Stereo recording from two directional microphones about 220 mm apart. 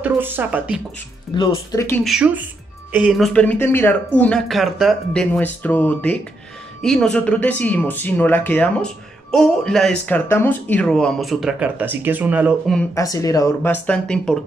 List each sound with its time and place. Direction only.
0.0 s speech: 10° right (ahead or behind)
1.3 s speech: 20° left (ahead or behind)
2.0 s speech: 5° right (ahead or behind)
12.9 s speech: 15° left (ahead or behind)